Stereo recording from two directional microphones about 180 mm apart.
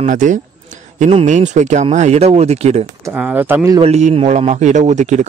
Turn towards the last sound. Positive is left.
turn(degrees=-40)  # may be behind; listen again after turning